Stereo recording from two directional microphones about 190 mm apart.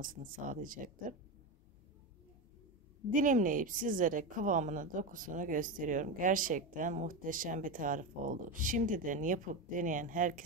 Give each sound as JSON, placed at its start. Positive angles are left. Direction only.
{"t": 0.0, "sound": "a woman's voice", "side_deg": -45}
{"t": 3.1, "sound": "a woman's voice", "side_deg": -45}